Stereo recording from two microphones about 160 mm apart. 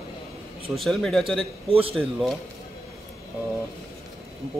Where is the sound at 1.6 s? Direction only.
35° right (ahead or behind).